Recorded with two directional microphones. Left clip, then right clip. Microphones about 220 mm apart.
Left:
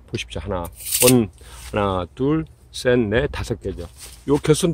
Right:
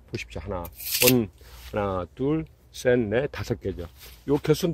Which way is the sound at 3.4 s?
15° right (ahead or behind).